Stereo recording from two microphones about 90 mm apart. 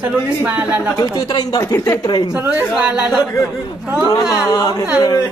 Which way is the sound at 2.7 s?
10° right (ahead or behind).